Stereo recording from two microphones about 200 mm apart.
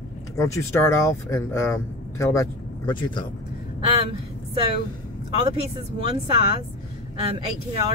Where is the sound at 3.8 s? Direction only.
25° right (ahead or behind).